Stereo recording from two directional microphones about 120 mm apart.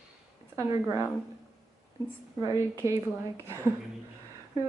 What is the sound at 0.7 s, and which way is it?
Speech, 30° right (ahead or behind).